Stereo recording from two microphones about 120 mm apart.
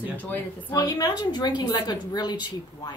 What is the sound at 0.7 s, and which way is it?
Speech, 30° left (ahead or behind).